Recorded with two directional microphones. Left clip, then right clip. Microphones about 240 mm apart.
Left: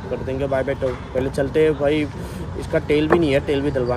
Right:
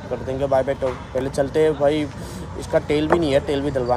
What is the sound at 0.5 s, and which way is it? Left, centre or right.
Speech, centre.